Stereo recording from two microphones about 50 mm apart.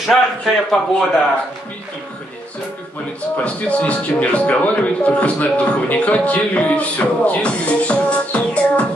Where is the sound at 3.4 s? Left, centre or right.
Left.